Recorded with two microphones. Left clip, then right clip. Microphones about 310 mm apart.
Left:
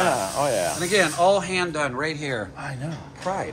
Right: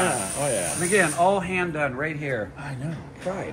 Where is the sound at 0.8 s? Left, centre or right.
Centre.